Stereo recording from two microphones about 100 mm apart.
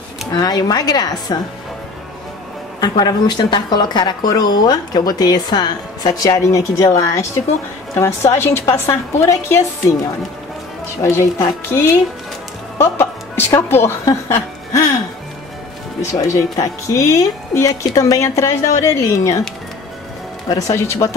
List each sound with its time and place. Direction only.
0.4 s a woman's voice: 40° left (ahead or behind)
2.8 s a woman's voice: 40° left (ahead or behind)
11.0 s a woman's voice: 30° left (ahead or behind)
14.0 s music: 30° left (ahead or behind)
16.0 s speech: 35° left (ahead or behind)
20.4 s speech: 35° left (ahead or behind)